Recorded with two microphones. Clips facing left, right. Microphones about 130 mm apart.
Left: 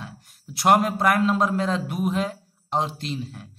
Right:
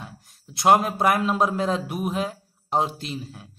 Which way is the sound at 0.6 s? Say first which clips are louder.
Right 1 dB; centre (ahead or behind).